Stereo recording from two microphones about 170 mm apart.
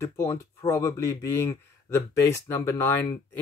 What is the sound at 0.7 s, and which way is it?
Speech, 15° left (ahead or behind).